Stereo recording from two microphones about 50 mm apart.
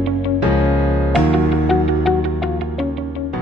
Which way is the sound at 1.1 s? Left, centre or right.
Centre.